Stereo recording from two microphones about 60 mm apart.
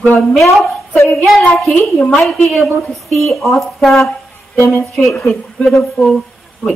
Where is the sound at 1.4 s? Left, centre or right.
Left.